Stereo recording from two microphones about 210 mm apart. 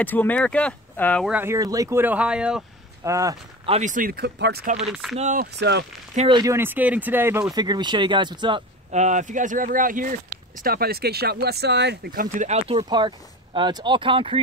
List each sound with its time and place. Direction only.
0.0 s speech: 10° left (ahead or behind)
1.3 s speech: 10° right (ahead or behind)
3.6 s speech: 30° right (ahead or behind); by 4.7 s 50° right (ahead or behind)
4.7 s speech: 5° right (ahead or behind)
5.1 s speech: 35° right (ahead or behind)
5.6 s speech: 55° right (ahead or behind)
6.1 s speech: 25° right (ahead or behind)